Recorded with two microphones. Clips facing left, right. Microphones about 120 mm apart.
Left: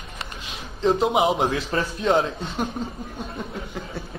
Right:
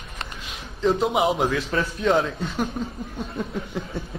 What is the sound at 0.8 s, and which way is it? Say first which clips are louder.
A man's voice: left 1 dB; 30° left (ahead or behind).